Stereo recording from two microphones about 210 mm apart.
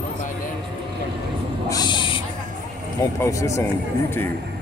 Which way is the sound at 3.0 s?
15° left (ahead or behind).